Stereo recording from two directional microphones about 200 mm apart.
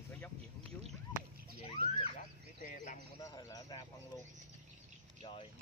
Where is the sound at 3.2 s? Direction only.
15° left (ahead or behind).